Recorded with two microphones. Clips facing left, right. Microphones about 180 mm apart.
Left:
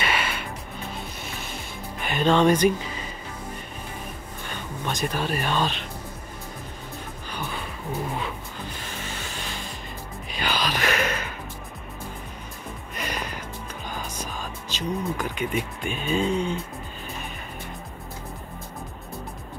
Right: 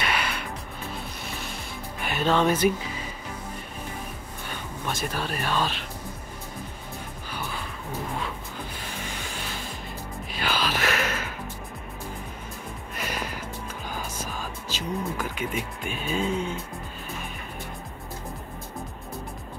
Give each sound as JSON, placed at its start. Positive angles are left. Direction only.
{"t": 0.0, "sound": "music", "side_deg": 0}
{"t": 2.0, "sound": "speech", "side_deg": -5}
{"t": 4.5, "sound": "speech", "side_deg": -5}
{"t": 10.3, "sound": "music", "side_deg": -5}
{"t": 12.9, "sound": "music", "side_deg": -5}
{"t": 13.8, "sound": "speech", "side_deg": -5}